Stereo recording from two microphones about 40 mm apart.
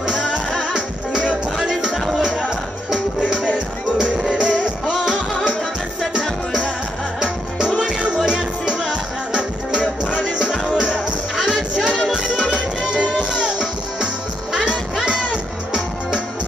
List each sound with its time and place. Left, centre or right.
0.0 s music: centre
2.0 s music: centre
3.2 s music: right
7.2 s music: right
11.3 s music: centre
11.7 s music: centre